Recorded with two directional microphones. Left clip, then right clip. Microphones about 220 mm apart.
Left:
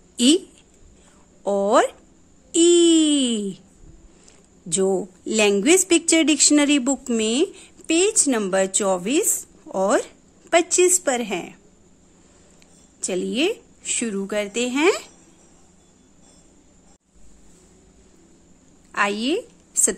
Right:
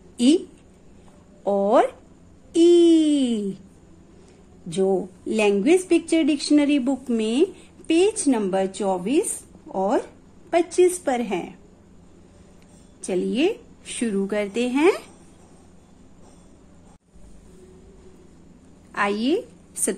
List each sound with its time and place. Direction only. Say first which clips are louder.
1.4 s a woman's voice: even; 20° left (ahead or behind)
5.2 s a woman's voice: left 2 dB; 25° left (ahead or behind)
13.0 s a woman's voice: even; 25° left (ahead or behind)
18.9 s a woman's voice: left 1 dB; 20° left (ahead or behind)